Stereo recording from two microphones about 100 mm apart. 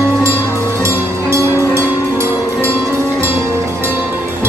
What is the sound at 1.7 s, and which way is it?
Music, 30° right (ahead or behind).